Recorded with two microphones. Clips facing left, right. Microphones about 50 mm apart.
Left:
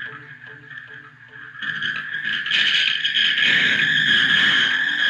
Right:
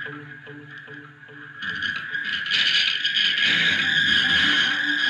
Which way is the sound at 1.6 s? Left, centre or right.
Left.